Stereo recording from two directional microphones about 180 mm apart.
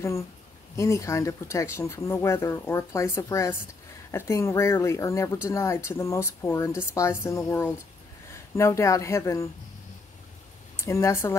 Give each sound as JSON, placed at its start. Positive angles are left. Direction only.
{"t": 0.7, "sound": "speech", "side_deg": 15}
{"t": 10.8, "sound": "speech", "side_deg": 15}